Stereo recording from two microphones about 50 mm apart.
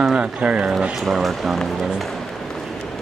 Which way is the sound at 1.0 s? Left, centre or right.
Centre.